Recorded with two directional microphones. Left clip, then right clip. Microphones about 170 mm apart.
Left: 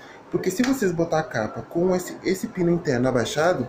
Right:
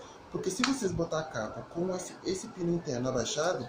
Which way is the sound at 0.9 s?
20° left (ahead or behind).